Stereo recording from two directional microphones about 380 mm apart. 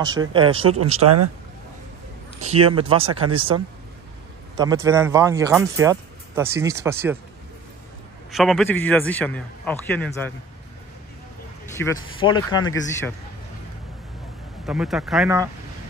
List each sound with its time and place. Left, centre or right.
0.3 s speech: centre
0.7 s speech: right
2.5 s speech: centre
8.3 s a man's voice: centre
11.7 s speech: centre
14.7 s a man's voice: centre